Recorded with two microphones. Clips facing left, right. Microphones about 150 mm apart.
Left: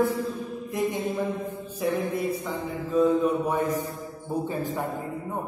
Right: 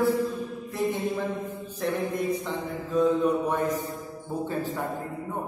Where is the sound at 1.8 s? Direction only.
5° left (ahead or behind).